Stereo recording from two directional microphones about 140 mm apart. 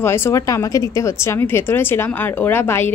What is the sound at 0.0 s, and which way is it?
Speech, 15° left (ahead or behind).